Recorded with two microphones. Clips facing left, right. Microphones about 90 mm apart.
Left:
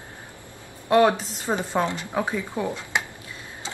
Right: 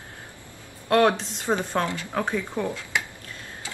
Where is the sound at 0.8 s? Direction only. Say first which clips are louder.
Left 2 dB; 5° left (ahead or behind).